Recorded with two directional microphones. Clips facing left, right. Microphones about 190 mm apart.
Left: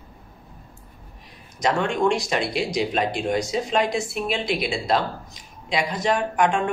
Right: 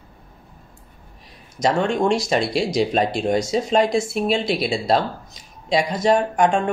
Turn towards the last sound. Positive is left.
turn(degrees=-40)  # may be behind; listen again after turning